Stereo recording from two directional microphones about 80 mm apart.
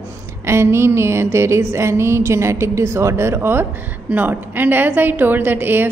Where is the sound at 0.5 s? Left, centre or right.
Right.